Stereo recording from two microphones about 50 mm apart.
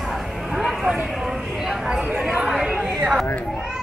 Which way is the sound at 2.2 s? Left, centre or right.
Centre.